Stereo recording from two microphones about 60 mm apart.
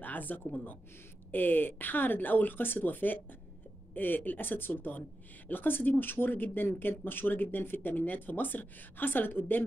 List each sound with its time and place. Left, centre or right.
0.0 s a woman's voice: left